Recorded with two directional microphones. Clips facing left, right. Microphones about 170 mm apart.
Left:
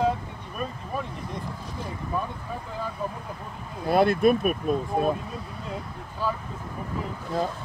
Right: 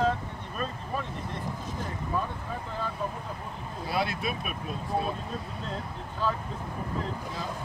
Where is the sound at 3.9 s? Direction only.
50° left (ahead or behind).